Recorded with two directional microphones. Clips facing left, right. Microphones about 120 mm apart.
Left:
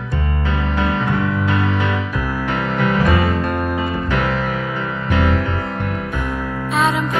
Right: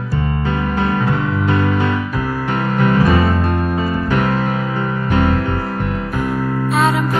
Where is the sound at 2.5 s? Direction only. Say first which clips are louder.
Right 3 dB; 35° right (ahead or behind).